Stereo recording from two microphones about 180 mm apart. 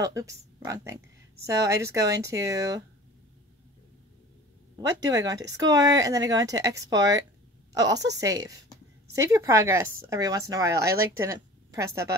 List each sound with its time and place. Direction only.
0.0 s a woman's voice: 20° right (ahead or behind)
4.8 s a woman's voice: 20° right (ahead or behind)